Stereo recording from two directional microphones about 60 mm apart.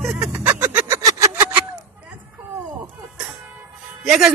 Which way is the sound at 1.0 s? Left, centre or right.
Right.